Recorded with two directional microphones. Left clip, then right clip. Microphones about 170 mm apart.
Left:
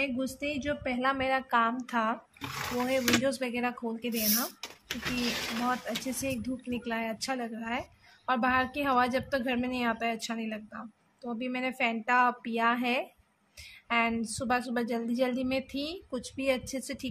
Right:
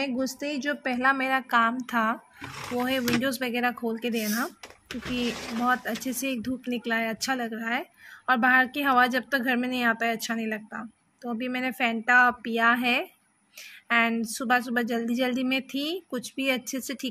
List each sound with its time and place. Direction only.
0.3 s a woman's voice: 30° right (ahead or behind)
5.6 s a woman's voice: 20° right (ahead or behind)